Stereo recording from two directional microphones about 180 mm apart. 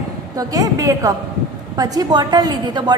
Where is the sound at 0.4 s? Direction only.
20° right (ahead or behind).